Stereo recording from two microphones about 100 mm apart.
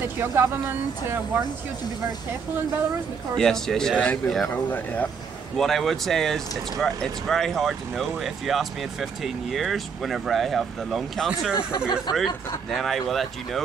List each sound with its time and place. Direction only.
0.4 s speech: 25° right (ahead or behind)
3.3 s speech: 5° left (ahead or behind)
4.5 s speech: 15° left (ahead or behind)
5.6 s speech: 5° left (ahead or behind)